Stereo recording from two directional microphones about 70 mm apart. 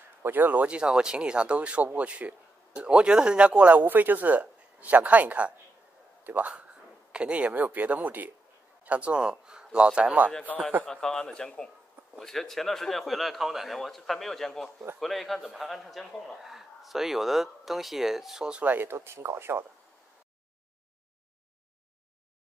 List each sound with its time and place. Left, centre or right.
0.2 s speech: right
10.9 s a man's voice: centre
18.6 s speech: right